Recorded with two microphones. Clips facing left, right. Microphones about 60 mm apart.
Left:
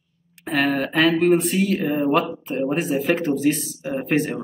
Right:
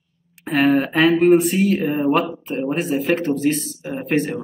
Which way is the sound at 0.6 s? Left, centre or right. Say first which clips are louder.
Right 4 dB; centre.